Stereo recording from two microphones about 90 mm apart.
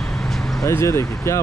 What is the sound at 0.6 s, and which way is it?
Speech, 35° left (ahead or behind).